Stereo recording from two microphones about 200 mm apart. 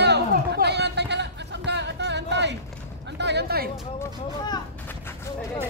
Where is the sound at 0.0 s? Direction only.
55° right (ahead or behind).